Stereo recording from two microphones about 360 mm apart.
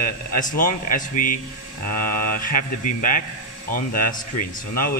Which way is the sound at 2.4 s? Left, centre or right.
Left.